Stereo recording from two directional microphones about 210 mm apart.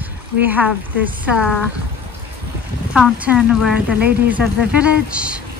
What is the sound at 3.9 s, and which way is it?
Speech, 50° right (ahead or behind).